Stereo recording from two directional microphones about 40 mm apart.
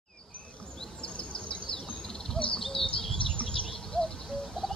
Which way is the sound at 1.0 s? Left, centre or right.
Left.